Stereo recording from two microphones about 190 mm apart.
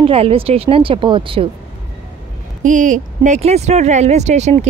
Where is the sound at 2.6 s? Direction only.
40° right (ahead or behind).